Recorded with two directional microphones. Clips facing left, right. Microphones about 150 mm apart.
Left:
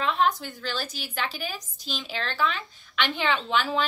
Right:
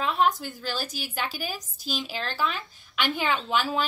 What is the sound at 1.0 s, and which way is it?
A woman's voice, 10° right (ahead or behind).